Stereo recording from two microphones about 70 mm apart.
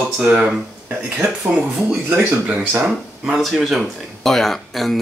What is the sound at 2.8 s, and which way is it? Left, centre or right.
Speech, centre.